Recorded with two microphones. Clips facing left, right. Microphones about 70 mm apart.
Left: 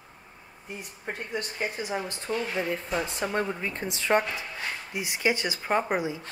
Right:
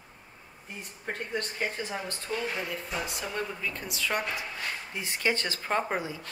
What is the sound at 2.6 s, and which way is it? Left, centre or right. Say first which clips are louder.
A woman's voice: left 5 dB; left.